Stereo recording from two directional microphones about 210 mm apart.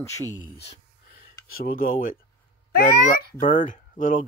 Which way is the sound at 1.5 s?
45° left (ahead or behind).